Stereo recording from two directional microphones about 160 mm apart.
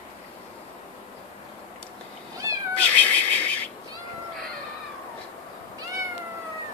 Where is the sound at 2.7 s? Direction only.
10° left (ahead or behind).